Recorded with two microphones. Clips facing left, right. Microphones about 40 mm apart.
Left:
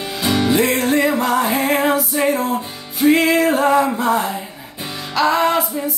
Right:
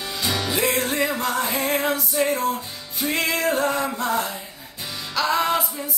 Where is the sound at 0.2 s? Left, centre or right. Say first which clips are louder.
Left 8 dB; left.